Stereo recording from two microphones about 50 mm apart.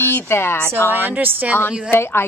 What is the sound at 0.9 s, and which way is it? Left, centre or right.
Speech, right.